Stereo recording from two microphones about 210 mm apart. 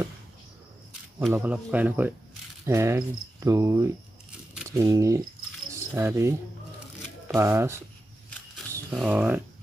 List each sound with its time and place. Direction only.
1.3 s cricket: 5° right (ahead or behind)
7.3 s cricket: 10° right (ahead or behind)
8.7 s speech: 5° right (ahead or behind)